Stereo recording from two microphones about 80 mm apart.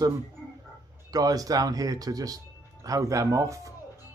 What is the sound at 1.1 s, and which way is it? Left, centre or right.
Speech, right.